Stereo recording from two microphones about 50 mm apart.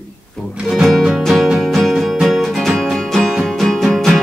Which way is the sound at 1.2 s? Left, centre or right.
Centre.